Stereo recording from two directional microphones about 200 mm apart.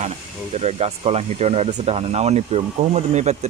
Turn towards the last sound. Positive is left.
turn(degrees=-35)  # may be behind; listen again after turning